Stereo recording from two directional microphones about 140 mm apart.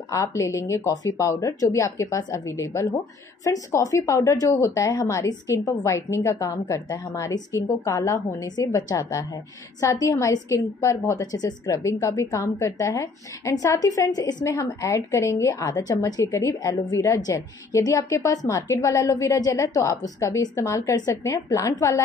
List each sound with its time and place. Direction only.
0.1 s a woman's voice: 20° left (ahead or behind)